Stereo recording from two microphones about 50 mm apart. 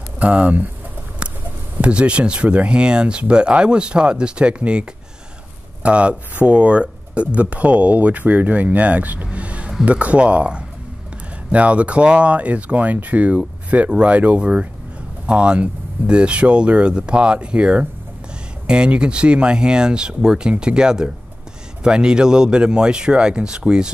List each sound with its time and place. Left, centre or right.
0.2 s speech: right
1.8 s speech: right